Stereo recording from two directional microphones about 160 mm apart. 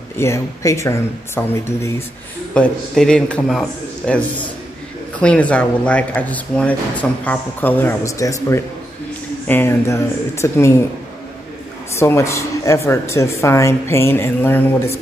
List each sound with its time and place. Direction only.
0.2 s speech: 20° left (ahead or behind)
2.5 s a man's voice: 5° left (ahead or behind)
5.2 s speech: 5° left (ahead or behind)
12.0 s speech: 15° left (ahead or behind)